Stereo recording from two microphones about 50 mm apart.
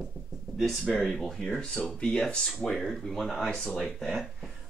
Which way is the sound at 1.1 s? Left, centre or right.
Centre.